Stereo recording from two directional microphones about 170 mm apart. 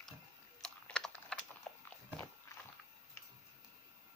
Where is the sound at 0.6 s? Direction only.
5° left (ahead or behind).